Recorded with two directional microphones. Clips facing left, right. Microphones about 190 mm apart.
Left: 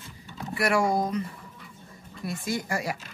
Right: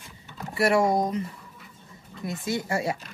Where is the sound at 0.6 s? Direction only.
25° right (ahead or behind).